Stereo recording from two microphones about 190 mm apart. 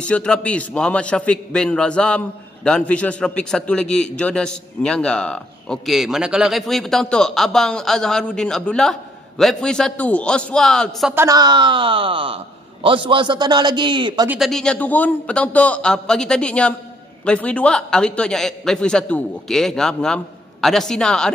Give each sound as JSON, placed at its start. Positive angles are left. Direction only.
{"t": 0.0, "sound": "a man's voice", "side_deg": 5}
{"t": 11.2, "sound": "a man's voice", "side_deg": -20}
{"t": 14.3, "sound": "a man's voice", "side_deg": 0}